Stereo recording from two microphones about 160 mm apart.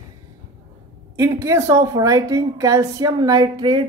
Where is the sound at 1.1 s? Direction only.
20° right (ahead or behind).